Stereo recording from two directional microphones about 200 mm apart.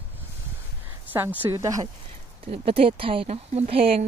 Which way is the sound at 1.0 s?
10° right (ahead or behind).